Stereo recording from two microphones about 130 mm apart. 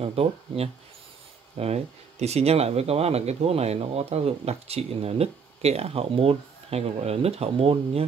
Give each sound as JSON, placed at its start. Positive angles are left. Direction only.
{"t": 0.0, "sound": "speech", "side_deg": -50}